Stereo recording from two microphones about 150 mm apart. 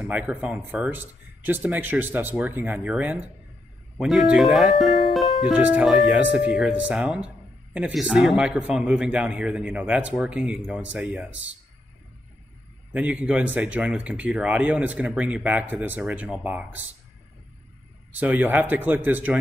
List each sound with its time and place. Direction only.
0.1 s a man's voice: 10° right (ahead or behind)
12.9 s a man's voice: 5° right (ahead or behind)
18.2 s a man's voice: 10° right (ahead or behind)